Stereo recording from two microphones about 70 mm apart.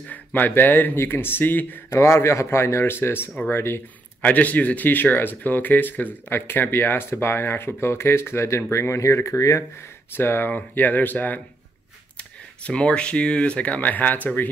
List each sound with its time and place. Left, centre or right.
0.1 s speech: left
1.9 s speech: left
4.3 s speech: left
10.1 s speech: left
12.6 s speech: centre